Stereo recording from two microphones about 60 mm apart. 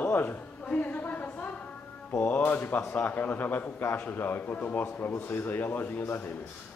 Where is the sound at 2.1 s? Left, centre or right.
Left.